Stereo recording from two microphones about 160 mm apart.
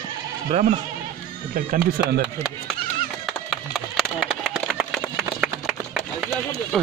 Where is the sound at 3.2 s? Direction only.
Centre (ahead or behind).